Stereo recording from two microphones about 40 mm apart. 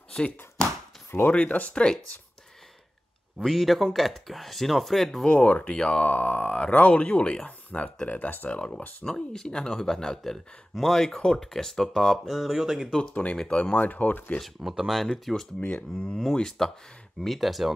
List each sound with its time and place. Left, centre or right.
1.3 s speech: left
1.7 s speech: left
3.4 s speech: centre
5.3 s speech: left
8.5 s speech: left
9.0 s speech: centre
12.3 s speech: centre
13.1 s speech: left
13.7 s speech: left
14.6 s speech: centre
15.6 s speech: left
16.3 s speech: centre